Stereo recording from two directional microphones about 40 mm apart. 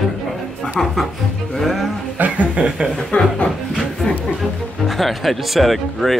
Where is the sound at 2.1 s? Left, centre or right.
Right.